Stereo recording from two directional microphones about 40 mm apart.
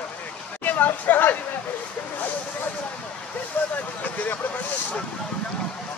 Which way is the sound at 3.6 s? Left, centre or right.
Left.